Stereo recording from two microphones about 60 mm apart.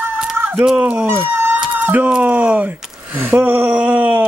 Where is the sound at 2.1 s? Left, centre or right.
Right.